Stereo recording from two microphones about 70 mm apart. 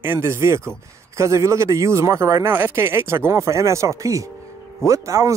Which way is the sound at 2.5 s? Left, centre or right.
Right.